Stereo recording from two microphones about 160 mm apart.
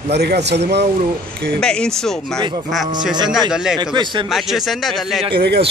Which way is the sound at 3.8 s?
30° right (ahead or behind).